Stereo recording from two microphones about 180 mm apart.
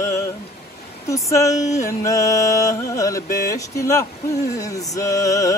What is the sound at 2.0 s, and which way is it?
Music, 20° left (ahead or behind).